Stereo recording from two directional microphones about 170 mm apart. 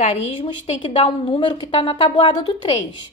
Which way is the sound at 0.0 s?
40° left (ahead or behind).